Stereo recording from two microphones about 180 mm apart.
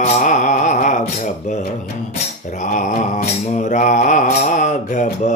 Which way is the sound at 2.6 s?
45° left (ahead or behind).